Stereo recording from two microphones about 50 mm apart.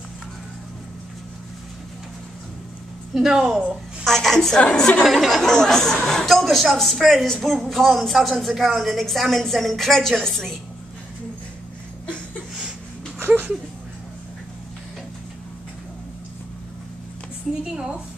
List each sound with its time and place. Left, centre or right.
3.2 s a woman's voice: centre
5.0 s a woman's voice: centre
17.5 s a sound: centre